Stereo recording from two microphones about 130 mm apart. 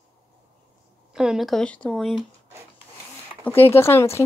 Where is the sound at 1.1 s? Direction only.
5° right (ahead or behind).